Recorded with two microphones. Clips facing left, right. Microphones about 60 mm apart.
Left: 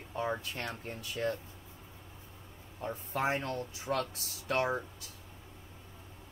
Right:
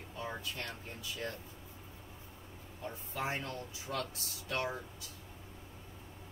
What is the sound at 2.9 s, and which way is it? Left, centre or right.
Speech, left.